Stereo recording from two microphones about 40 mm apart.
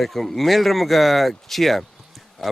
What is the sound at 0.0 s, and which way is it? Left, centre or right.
Speech, centre.